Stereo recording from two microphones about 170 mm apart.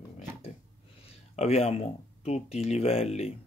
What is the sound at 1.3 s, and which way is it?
Speech, 40° left (ahead or behind).